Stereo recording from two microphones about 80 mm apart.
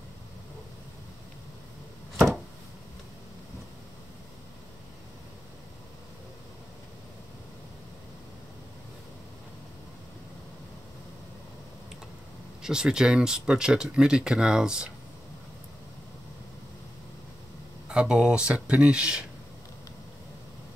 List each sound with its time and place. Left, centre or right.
2.1 s a sound: centre
12.6 s speech: centre
17.8 s speech: centre